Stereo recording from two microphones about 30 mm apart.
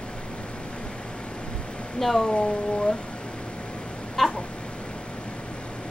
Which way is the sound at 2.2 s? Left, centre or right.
Left.